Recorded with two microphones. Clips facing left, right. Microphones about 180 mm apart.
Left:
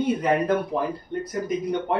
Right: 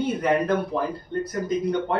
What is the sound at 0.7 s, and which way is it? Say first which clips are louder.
Speech: even; 15° left (ahead or behind).